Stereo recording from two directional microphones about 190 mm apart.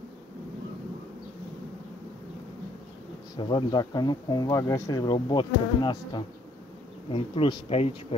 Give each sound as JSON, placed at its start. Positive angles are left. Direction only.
{"t": 3.3, "sound": "speech", "side_deg": 25}